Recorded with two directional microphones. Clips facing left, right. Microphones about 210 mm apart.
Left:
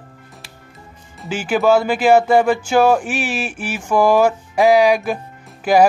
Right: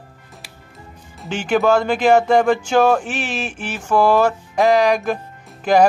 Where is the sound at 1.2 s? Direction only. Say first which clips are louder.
Right 1 dB; 5° left (ahead or behind).